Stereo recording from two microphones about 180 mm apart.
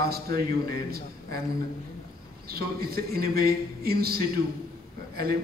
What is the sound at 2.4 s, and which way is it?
A man's voice, 60° right (ahead or behind).